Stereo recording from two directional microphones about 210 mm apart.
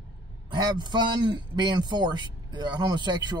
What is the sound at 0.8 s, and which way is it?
Speech, 20° right (ahead or behind).